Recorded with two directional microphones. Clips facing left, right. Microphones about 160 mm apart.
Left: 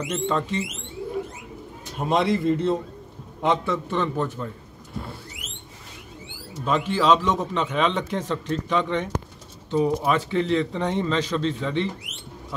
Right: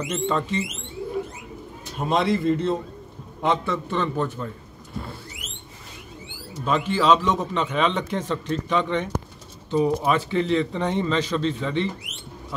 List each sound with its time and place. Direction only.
0.0 s a man's voice: centre (ahead or behind)
2.0 s a man's voice: 15° left (ahead or behind)
3.4 s a man's voice: 5° left (ahead or behind)
6.6 s a man's voice: centre (ahead or behind)